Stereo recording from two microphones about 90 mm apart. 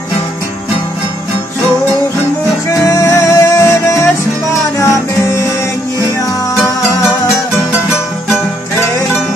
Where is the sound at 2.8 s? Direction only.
35° left (ahead or behind).